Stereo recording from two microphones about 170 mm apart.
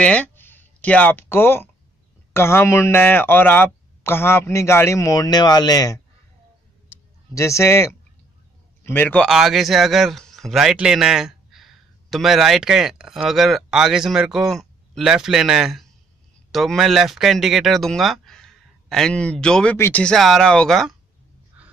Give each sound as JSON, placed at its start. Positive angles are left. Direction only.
{"t": 0.0, "sound": "speech", "side_deg": 10}
{"t": 7.3, "sound": "a man's voice", "side_deg": 15}